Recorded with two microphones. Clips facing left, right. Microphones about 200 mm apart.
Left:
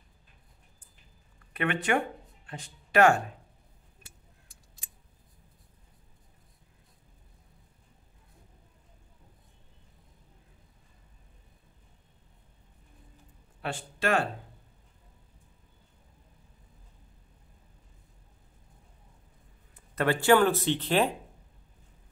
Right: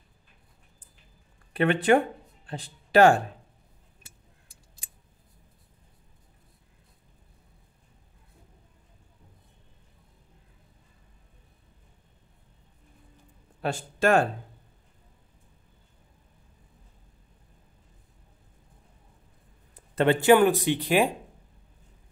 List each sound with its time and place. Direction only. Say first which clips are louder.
1.5 s a man's voice: right 7 dB; 30° right (ahead or behind)
13.6 s speech: right 7 dB; 40° right (ahead or behind)
19.7 s speech: right 5 dB; 25° right (ahead or behind)